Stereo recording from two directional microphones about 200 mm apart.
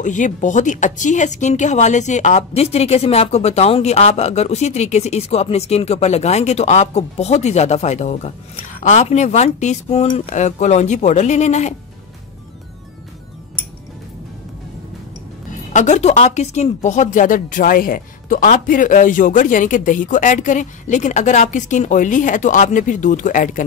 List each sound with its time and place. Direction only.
0.0 s speech: 40° left (ahead or behind)
15.7 s speech: 35° left (ahead or behind)